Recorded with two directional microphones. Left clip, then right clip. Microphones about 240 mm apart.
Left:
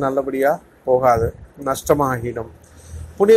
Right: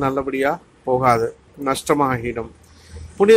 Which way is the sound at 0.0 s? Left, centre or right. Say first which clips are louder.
Left 2 dB; centre.